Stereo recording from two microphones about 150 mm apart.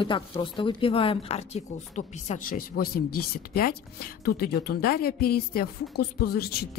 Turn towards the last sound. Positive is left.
turn(degrees=90)